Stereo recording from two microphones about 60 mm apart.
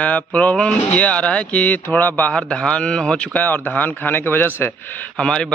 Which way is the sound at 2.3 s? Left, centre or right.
Centre.